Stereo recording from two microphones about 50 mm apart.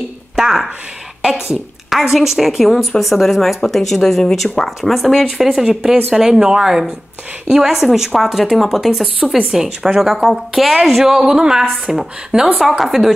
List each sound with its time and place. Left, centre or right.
0.4 s speech: centre
5.7 s a woman's voice: centre